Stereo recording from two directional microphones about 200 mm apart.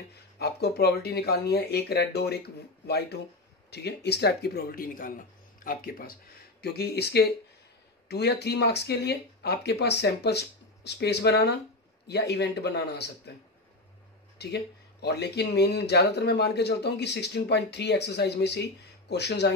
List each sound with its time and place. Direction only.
0.1 s speech: 55° left (ahead or behind)
3.7 s speech: 55° left (ahead or behind)
14.4 s speech: 55° left (ahead or behind)